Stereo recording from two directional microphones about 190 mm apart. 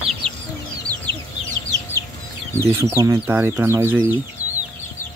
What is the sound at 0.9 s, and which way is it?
Chicken, 20° right (ahead or behind).